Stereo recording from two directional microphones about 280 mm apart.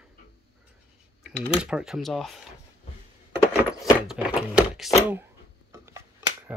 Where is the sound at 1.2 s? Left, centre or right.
Centre.